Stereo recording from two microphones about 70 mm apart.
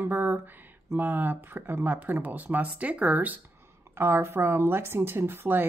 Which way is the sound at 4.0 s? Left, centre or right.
Right.